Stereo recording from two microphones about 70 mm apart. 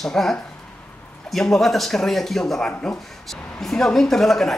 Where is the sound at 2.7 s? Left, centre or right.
Centre.